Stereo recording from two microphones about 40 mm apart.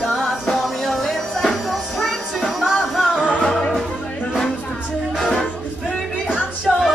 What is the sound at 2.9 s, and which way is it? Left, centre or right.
Music, centre.